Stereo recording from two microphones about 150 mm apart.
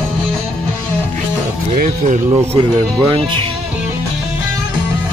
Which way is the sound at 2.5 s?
30° right (ahead or behind).